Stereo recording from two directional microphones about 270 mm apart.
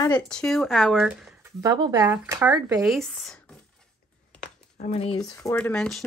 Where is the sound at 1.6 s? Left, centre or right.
Centre.